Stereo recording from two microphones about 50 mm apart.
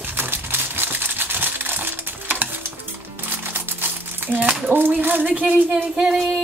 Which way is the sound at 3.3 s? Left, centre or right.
Right.